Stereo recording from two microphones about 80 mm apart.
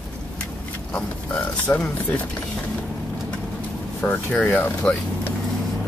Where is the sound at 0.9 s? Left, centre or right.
Centre.